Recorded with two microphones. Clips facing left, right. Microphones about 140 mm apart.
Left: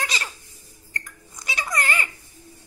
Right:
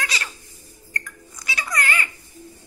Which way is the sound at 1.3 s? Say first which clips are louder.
Even; 25° left (ahead or behind).